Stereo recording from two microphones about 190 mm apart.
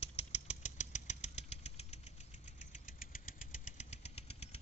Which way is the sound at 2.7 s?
45° left (ahead or behind).